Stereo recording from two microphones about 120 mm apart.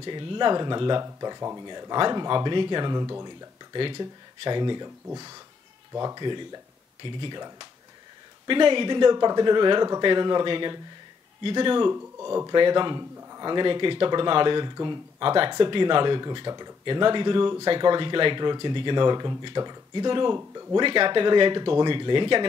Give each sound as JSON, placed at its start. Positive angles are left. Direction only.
{"t": 0.0, "sound": "speech", "side_deg": -40}
{"t": 1.0, "sound": "speech", "side_deg": -30}
{"t": 3.7, "sound": "speech", "side_deg": -45}
{"t": 11.9, "sound": "speech", "side_deg": -25}
{"t": 12.4, "sound": "speech", "side_deg": -40}
{"t": 20.3, "sound": "speech", "side_deg": -25}
{"t": 20.7, "sound": "speech", "side_deg": -45}